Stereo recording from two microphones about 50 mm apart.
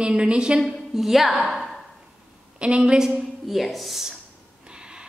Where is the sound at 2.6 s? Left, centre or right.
Centre.